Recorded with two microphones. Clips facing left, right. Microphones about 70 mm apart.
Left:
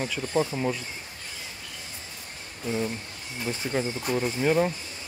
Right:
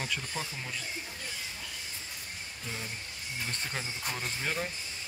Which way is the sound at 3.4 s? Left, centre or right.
Centre.